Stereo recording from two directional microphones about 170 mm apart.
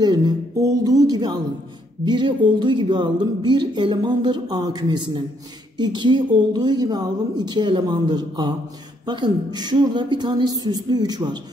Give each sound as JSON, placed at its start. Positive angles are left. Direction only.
{"t": 0.0, "sound": "speech", "side_deg": -25}